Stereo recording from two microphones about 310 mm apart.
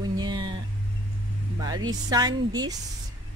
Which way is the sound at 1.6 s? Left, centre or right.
Centre.